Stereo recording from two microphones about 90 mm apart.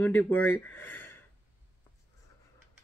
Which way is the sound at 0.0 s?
20° left (ahead or behind).